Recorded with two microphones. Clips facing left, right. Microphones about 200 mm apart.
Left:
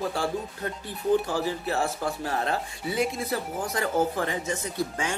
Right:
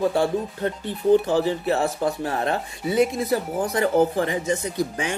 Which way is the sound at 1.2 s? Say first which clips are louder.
Right 7 dB; 20° right (ahead or behind).